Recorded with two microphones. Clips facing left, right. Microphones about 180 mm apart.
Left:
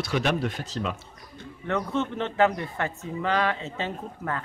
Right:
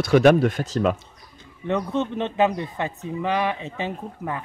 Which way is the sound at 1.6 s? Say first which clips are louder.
Right 3 dB; 15° right (ahead or behind).